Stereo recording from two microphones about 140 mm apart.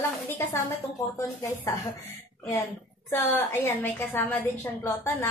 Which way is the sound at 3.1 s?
15° left (ahead or behind).